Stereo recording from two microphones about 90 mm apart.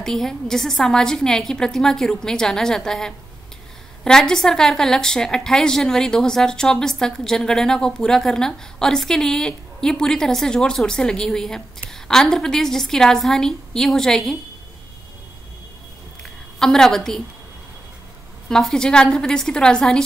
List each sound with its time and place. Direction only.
0.0 s a woman's voice: 5° left (ahead or behind)
16.2 s a sound: 5° left (ahead or behind)
18.5 s a woman's voice: 5° left (ahead or behind)